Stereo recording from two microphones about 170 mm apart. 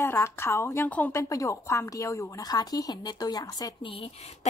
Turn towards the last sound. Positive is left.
turn(degrees=35)  # may be behind; listen again after turning